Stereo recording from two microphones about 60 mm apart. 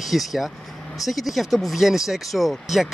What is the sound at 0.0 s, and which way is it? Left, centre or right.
Speech, centre.